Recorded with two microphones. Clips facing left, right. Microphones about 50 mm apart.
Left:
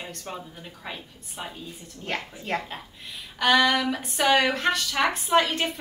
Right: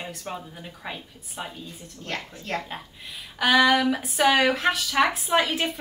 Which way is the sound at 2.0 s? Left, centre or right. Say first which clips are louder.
Left 2 dB; centre.